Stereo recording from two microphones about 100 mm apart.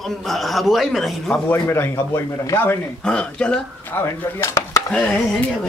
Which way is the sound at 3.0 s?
10° left (ahead or behind).